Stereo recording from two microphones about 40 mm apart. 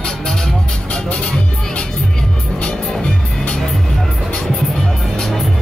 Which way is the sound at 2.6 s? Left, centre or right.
Left.